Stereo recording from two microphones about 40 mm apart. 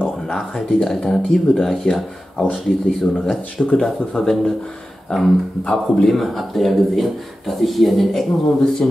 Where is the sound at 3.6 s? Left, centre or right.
Left.